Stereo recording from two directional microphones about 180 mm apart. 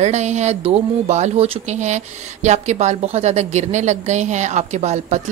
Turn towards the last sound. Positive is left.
turn(degrees=-40)  # may be behind; listen again after turning